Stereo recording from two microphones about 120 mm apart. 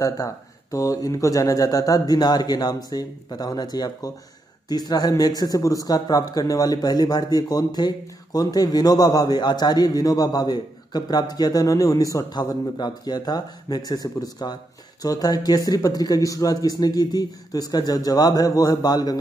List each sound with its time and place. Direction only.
0.0 s speech: 25° left (ahead or behind)